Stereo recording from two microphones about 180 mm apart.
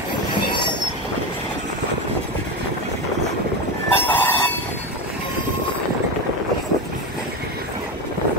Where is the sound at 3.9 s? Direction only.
10° left (ahead or behind).